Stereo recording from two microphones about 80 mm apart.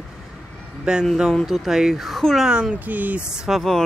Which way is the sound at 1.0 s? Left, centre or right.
Centre.